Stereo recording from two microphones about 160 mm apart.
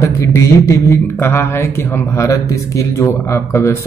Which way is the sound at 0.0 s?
20° left (ahead or behind).